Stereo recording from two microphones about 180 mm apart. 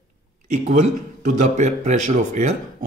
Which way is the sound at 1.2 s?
40° right (ahead or behind).